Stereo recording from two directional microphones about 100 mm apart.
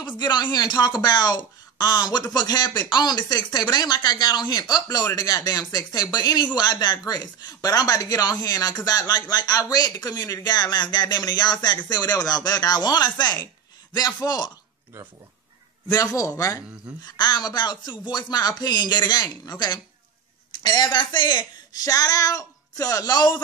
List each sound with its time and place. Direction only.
0.0 s speech: 45° left (ahead or behind)
15.9 s speech: 35° left (ahead or behind)
17.0 s speech: 45° left (ahead or behind)